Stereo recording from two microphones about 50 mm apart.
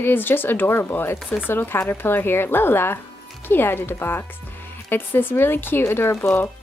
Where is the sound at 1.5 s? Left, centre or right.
Left.